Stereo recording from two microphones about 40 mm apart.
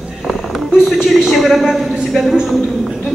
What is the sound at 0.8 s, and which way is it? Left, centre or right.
Speech, centre.